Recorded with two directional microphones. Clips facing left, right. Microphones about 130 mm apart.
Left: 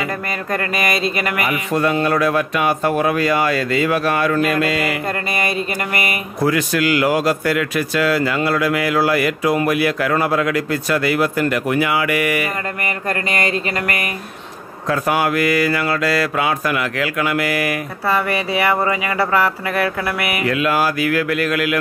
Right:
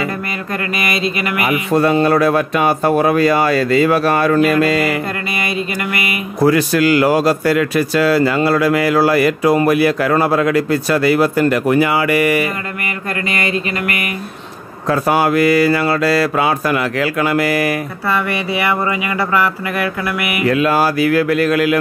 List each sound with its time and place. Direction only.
0.7 s speech: 40° left (ahead or behind)
1.7 s a man's voice: 35° right (ahead or behind)
6.4 s a man's voice: 35° right (ahead or behind)
13.3 s speech: 40° left (ahead or behind)
14.9 s a man's voice: 30° right (ahead or behind)
18.0 s speech: 35° left (ahead or behind)
20.4 s a man's voice: 35° right (ahead or behind)